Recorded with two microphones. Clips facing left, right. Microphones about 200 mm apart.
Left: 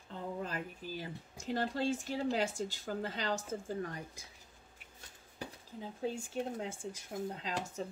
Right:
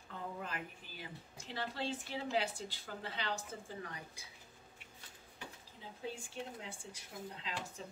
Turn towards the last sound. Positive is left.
turn(degrees=45)  # may be behind; listen again after turning